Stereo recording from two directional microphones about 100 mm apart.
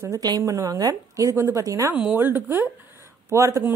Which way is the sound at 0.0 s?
40° right (ahead or behind).